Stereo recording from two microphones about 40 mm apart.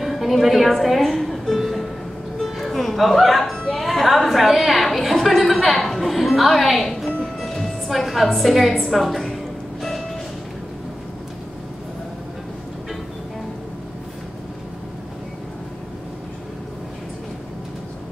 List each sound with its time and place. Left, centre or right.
0.0 s music: centre
3.8 s a sound: centre
7.3 s music: centre